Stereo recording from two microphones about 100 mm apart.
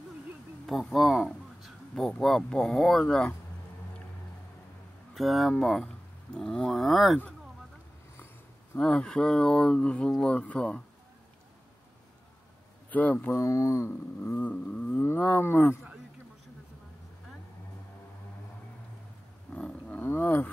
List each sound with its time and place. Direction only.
0.7 s speech: centre (ahead or behind)
5.1 s speech: centre (ahead or behind)
8.7 s speech: 10° left (ahead or behind)
12.9 s speech: 15° left (ahead or behind)
13.4 s speech: 35° left (ahead or behind)
14.2 s speech: 15° left (ahead or behind)
19.5 s roaring cats: 5° left (ahead or behind)
20.0 s speech: 20° left (ahead or behind)